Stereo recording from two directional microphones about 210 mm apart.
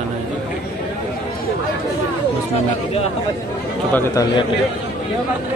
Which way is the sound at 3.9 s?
15° left (ahead or behind).